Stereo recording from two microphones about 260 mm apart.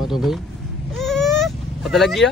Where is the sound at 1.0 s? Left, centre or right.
Centre.